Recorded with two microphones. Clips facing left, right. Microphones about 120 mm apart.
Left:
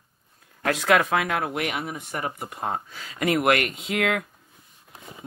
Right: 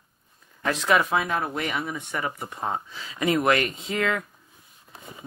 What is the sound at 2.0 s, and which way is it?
Speech, 45° left (ahead or behind).